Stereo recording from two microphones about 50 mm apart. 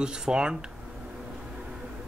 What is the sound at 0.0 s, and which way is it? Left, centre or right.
Speech, centre.